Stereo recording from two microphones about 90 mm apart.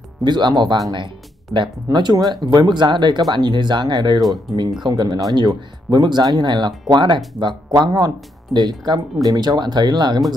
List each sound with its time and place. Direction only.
0.2 s speech: 55° right (ahead or behind)
4.2 s speech: centre (ahead or behind)
4.8 s speech: 55° right (ahead or behind)